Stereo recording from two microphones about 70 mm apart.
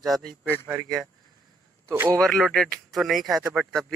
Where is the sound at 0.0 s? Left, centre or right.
Centre.